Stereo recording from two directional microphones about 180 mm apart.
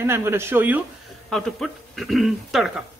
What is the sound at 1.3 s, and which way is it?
Speech, centre (ahead or behind).